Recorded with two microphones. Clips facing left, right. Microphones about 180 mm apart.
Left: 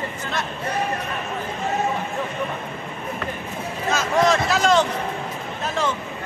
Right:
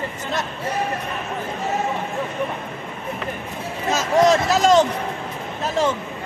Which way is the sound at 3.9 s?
40° right (ahead or behind).